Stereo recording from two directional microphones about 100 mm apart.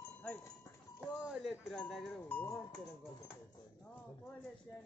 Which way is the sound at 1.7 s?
5° left (ahead or behind).